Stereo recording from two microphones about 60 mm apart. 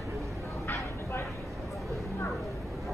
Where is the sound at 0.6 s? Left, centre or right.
Left.